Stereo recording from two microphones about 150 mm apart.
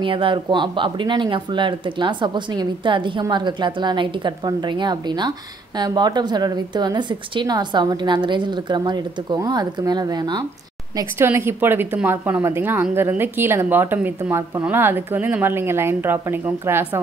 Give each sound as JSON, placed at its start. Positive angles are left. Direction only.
{"t": 0.0, "sound": "a woman's voice", "side_deg": -35}
{"t": 11.0, "sound": "a woman's voice", "side_deg": -15}